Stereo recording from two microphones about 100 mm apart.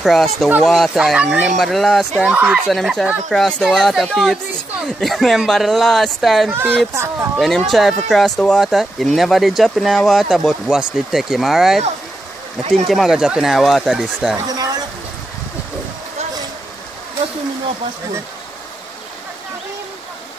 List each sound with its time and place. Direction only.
0.0 s speech: centre (ahead or behind)
1.1 s speech: 15° right (ahead or behind)
1.6 s speech: centre (ahead or behind)
2.3 s speech: 10° right (ahead or behind)
6.9 s speech: 25° right (ahead or behind)
7.3 s speech: 5° left (ahead or behind)
14.4 s a sound: 40° right (ahead or behind)